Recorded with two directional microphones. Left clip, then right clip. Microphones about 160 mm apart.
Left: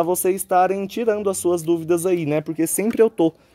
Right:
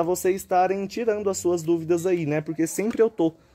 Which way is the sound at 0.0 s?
65° left (ahead or behind).